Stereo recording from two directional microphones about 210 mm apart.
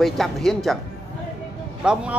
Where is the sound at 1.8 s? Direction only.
5° right (ahead or behind).